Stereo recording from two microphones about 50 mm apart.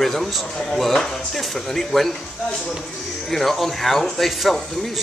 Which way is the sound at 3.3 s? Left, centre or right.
Centre.